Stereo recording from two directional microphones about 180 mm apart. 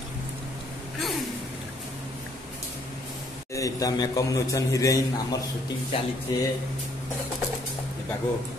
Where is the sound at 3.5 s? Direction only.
20° left (ahead or behind).